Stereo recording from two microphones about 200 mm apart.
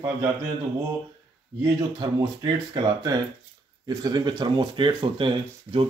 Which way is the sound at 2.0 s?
20° right (ahead or behind).